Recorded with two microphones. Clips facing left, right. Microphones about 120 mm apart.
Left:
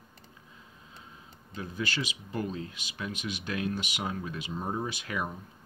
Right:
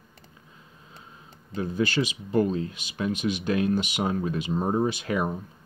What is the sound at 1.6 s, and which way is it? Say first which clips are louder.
Speech: right 9 dB; 30° right (ahead or behind).